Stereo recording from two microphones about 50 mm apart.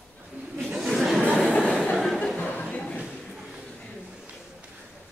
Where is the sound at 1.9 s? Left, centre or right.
Centre.